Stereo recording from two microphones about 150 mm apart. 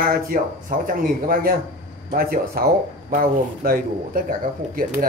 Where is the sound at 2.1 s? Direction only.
90° right.